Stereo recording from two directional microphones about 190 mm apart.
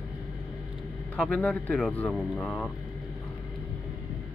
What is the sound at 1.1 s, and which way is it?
A man's voice, 10° left (ahead or behind).